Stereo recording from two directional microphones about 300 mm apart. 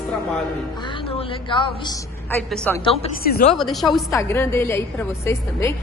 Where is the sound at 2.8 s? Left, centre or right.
Centre.